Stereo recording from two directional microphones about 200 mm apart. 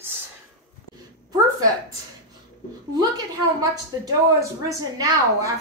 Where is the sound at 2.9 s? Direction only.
20° right (ahead or behind).